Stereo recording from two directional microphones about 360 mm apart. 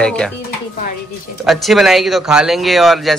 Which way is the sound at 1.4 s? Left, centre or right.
Centre.